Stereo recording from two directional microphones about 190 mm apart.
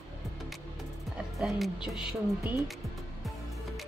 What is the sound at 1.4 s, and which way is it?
Speech, centre (ahead or behind).